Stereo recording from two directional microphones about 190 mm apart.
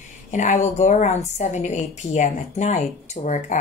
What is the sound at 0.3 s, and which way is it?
A woman's voice, 40° left (ahead or behind).